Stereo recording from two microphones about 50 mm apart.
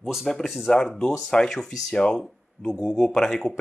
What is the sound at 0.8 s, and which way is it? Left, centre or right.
Speech, centre.